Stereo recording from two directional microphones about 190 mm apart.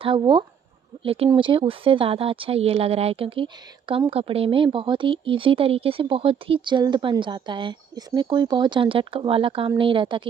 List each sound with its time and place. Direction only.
0.0 s speech: 25° right (ahead or behind)